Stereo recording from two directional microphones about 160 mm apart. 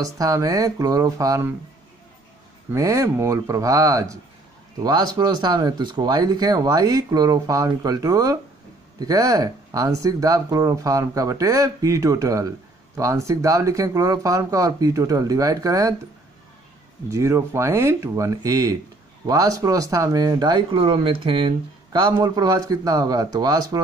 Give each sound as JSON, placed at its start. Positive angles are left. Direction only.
{"t": 0.0, "sound": "speech", "side_deg": -20}
{"t": 2.7, "sound": "speech", "side_deg": -20}
{"t": 17.1, "sound": "speech", "side_deg": -20}